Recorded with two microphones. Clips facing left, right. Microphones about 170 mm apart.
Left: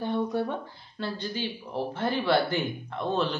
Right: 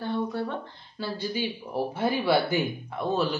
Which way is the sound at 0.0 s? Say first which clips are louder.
Left 1 dB; 15° left (ahead or behind).